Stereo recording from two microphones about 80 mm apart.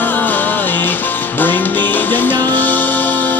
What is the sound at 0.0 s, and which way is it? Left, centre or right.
Music, left.